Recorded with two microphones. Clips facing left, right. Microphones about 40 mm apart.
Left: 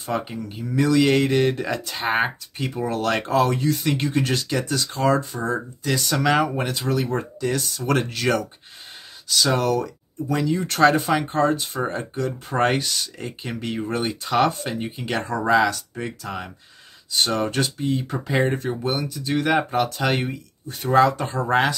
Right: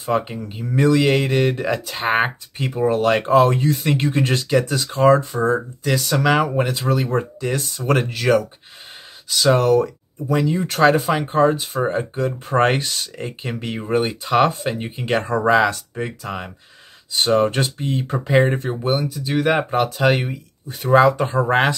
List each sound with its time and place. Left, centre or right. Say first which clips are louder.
0.1 s speech: right 5 dB; right
0.9 s speech: right 1 dB; centre
2.0 s speech: right 3 dB; right
5.9 s speech: right 3 dB; centre
7.2 s speech: right 2 dB; right
8.0 s speech: right 5 dB; centre
12.6 s speech: right 2 dB; right
15.9 s speech: right 3 dB; centre
17.4 s speech: right 4 dB; right
18.9 s speech: right 5 dB; centre; by 21.7 s right